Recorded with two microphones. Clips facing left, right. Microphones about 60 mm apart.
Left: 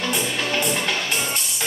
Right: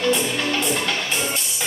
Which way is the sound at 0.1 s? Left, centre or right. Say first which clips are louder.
Right 2 dB; centre.